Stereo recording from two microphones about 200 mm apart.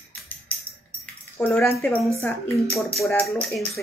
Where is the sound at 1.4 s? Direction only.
10° left (ahead or behind).